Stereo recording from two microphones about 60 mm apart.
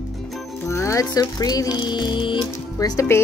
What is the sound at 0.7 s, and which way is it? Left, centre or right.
Speech, left.